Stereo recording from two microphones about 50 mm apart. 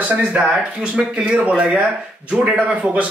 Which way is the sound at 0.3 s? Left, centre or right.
Right.